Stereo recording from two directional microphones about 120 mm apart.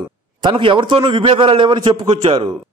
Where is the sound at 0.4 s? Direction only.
45° right (ahead or behind).